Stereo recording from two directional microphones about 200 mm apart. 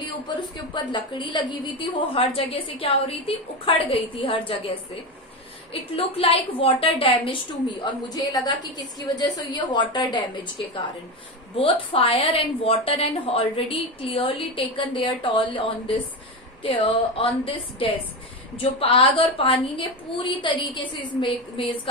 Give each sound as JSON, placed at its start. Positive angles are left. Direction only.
{"t": 0.0, "sound": "a woman's voice", "side_deg": 25}